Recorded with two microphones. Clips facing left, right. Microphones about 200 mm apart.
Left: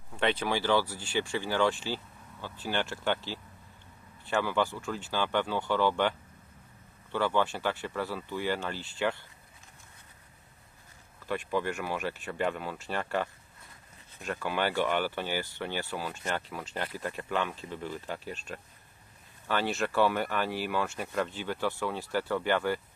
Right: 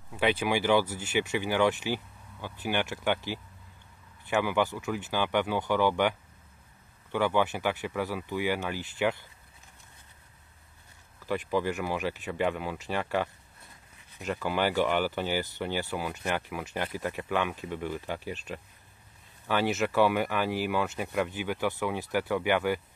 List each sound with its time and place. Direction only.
0.1 s speech: 5° right (ahead or behind)
11.2 s speech: 10° right (ahead or behind)
19.4 s speech: 15° right (ahead or behind)